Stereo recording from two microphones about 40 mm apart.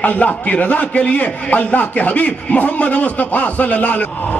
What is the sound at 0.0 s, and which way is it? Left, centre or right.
A man's voice, left.